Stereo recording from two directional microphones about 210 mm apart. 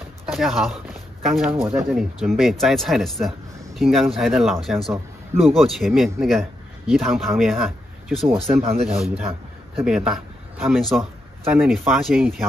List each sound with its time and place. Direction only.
0.3 s speech: centre (ahead or behind)
8.6 s speech: 30° right (ahead or behind)
9.8 s a man's voice: centre (ahead or behind)